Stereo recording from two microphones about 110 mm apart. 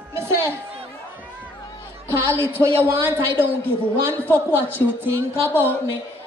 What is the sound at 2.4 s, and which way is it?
Speech, 20° right (ahead or behind).